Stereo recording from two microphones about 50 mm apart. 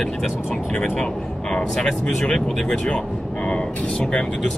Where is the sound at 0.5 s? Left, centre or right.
Centre.